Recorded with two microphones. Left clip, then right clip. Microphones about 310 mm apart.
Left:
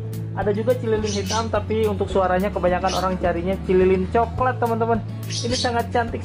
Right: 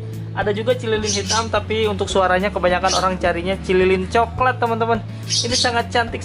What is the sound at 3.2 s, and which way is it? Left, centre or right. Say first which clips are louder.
A man's voice: right 3 dB; centre.